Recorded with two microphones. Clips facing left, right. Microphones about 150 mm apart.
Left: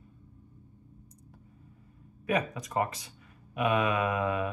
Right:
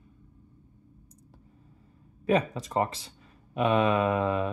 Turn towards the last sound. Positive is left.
turn(degrees=-30)  # may be behind; listen again after turning